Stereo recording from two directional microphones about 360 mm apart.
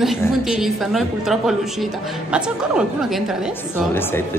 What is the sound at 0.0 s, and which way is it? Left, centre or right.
A woman's voice, centre.